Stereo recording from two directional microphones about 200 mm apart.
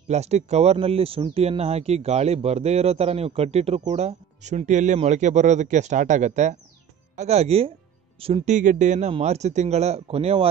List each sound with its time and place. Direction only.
0.1 s speech: 35° right (ahead or behind)